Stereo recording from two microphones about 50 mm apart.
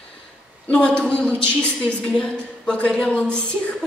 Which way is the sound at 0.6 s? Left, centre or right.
Left.